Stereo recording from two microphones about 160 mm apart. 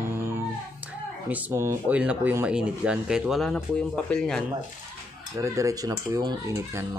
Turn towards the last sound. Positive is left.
turn(degrees=-20)  # may be behind; listen again after turning